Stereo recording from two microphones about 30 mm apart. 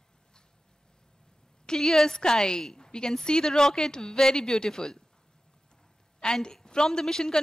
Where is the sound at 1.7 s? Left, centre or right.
Centre.